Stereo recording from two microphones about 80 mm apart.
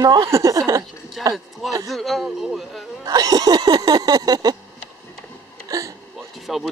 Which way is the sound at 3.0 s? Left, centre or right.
Right.